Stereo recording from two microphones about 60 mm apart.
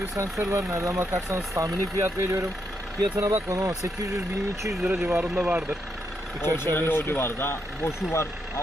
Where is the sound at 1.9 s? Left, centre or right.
Right.